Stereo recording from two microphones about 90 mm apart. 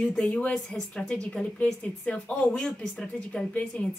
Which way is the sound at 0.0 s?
10° left (ahead or behind).